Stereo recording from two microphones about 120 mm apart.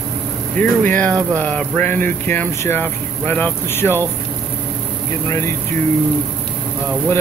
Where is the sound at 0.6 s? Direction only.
15° left (ahead or behind).